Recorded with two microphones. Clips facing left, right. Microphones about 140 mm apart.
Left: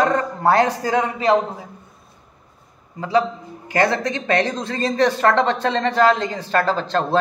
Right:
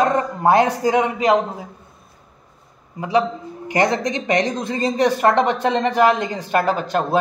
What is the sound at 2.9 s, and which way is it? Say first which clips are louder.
A man's voice: even; 15° right (ahead or behind).